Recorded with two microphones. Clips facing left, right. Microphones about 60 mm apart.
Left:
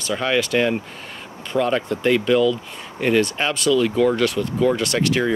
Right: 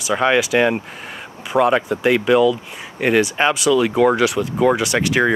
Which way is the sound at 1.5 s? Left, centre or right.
Centre.